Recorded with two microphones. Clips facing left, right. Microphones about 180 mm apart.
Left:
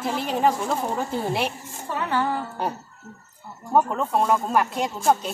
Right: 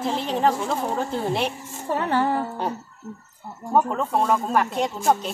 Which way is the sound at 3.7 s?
Centre (ahead or behind).